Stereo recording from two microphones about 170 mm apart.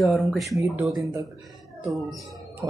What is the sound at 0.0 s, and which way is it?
Speech, centre (ahead or behind).